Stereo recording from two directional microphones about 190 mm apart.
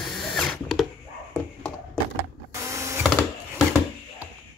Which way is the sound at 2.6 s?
15° right (ahead or behind).